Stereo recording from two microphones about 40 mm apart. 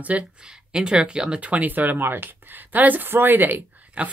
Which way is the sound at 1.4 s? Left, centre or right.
Right.